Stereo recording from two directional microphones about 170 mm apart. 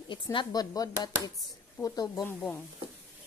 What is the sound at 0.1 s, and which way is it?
Speech, 30° left (ahead or behind).